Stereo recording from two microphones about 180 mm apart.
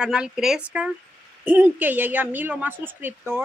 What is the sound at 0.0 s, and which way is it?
A woman's voice, 5° right (ahead or behind).